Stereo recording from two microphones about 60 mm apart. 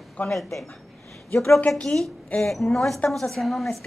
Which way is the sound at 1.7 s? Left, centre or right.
Centre.